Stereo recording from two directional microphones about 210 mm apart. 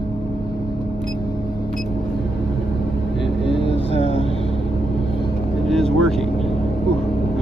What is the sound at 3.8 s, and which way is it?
Vehicle, 30° left (ahead or behind).